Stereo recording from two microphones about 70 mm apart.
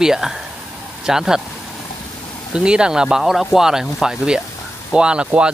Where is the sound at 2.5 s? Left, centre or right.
Centre.